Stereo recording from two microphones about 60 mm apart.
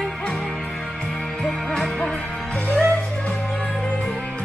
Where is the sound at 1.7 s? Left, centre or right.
Centre.